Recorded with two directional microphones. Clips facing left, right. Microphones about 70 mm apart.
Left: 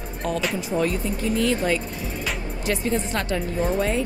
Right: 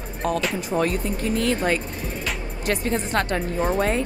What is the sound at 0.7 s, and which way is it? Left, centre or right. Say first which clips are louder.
Speech: right 1 dB; right.